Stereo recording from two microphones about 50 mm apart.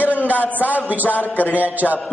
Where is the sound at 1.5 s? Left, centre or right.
Right.